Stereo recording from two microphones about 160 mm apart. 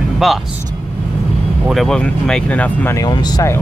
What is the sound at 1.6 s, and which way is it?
Speech, centre (ahead or behind).